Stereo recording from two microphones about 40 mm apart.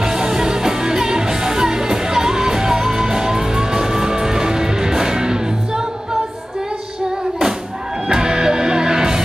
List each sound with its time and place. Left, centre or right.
0.0 s music: centre
8.1 s music: centre